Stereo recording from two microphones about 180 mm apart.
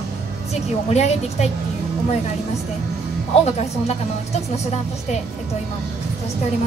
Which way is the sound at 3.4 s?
35° left (ahead or behind).